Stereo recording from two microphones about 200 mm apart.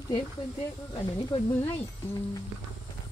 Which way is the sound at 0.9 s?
20° left (ahead or behind).